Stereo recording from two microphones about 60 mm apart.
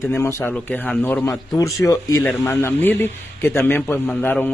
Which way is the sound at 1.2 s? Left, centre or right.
Left.